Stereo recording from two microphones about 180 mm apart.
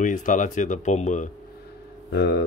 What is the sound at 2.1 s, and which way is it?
Speech, 70° left (ahead or behind).